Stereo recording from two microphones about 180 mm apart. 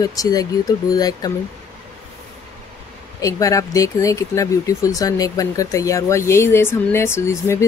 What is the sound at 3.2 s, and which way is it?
Speech, 15° left (ahead or behind).